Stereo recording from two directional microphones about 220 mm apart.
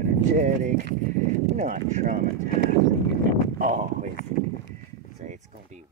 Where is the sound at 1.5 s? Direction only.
30° right (ahead or behind).